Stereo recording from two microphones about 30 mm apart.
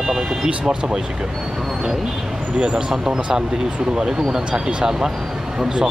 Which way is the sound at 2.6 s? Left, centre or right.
Right.